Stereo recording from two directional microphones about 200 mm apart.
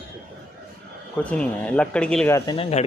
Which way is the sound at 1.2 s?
5° left (ahead or behind).